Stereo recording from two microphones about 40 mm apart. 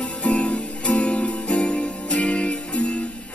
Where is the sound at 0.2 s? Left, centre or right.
Left.